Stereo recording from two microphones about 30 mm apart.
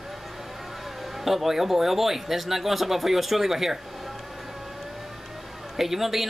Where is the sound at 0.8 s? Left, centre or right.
Centre.